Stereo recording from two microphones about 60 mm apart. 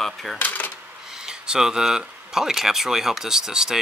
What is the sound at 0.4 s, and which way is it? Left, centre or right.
Speech, left.